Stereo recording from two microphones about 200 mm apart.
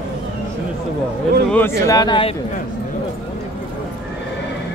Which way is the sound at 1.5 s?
15° left (ahead or behind).